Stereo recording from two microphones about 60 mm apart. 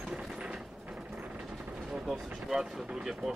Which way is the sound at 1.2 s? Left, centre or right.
Centre.